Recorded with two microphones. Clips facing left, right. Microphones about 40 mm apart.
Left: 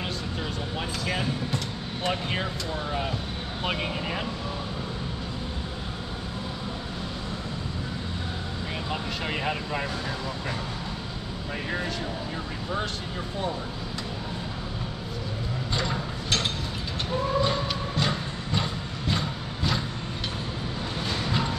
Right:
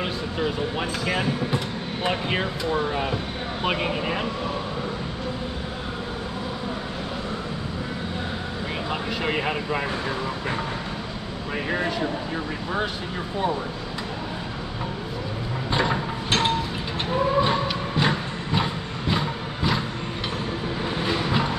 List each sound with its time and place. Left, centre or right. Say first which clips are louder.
0.0 s speech: right 6 dB; right
9.2 s speech: right 5 dB; centre
11.7 s speech: right 6 dB; right
15.7 s a sound: right 7 dB; right
17.6 s vehicle: right 4 dB; centre
21.0 s a sound: right 4 dB; centre